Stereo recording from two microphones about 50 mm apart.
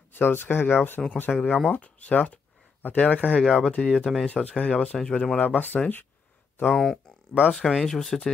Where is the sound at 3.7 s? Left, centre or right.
Centre.